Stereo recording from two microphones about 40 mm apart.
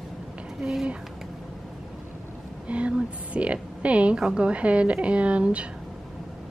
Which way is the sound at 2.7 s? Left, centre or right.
Right.